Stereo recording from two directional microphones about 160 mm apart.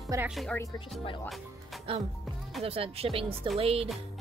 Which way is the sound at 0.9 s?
30° left (ahead or behind).